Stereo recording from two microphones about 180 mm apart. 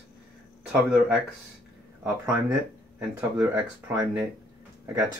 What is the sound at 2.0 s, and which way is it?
Speech, 15° right (ahead or behind).